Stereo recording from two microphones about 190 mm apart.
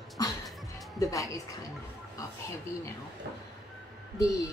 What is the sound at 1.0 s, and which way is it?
Speech, 15° left (ahead or behind).